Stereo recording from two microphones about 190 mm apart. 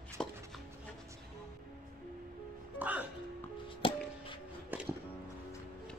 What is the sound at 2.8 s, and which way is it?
Music, 10° right (ahead or behind).